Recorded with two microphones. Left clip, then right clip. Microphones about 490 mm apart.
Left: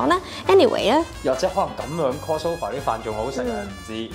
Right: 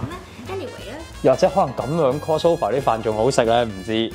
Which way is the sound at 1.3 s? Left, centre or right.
Right.